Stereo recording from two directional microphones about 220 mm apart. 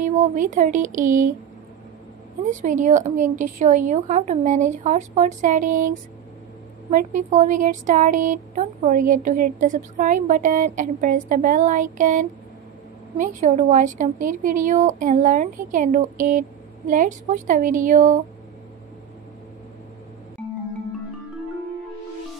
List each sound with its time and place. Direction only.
0.0 s speech: 35° right (ahead or behind)
2.5 s speech: 35° right (ahead or behind)
6.9 s speech: 35° right (ahead or behind)